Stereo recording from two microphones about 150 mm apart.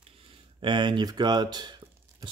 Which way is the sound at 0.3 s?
35° right (ahead or behind).